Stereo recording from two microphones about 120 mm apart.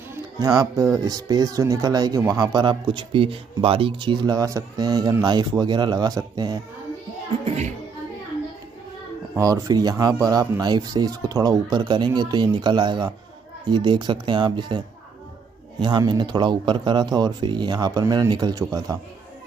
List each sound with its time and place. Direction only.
0.4 s speech: 35° right (ahead or behind)
7.4 s music: 70° right (ahead or behind)
9.4 s speech: 30° right (ahead or behind)
15.8 s speech: 40° right (ahead or behind)